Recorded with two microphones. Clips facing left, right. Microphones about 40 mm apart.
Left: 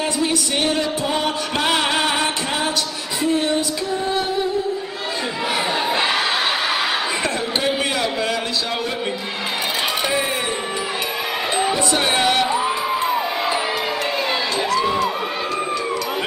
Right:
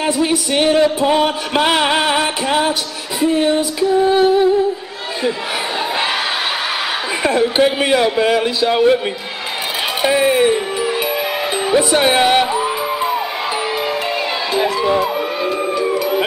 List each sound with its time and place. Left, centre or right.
0.0 s music: centre
7.2 s music: centre
10.0 s a sound: centre
11.7 s music: centre
12.4 s music: centre
14.5 s crowd: centre
15.8 s music: centre